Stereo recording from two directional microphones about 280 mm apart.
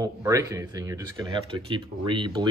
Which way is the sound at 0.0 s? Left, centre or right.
Centre.